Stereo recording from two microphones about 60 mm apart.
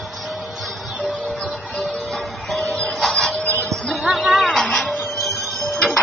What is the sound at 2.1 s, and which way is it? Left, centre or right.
Music, centre.